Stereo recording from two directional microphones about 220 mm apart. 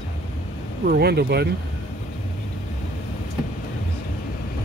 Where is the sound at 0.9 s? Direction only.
45° right (ahead or behind).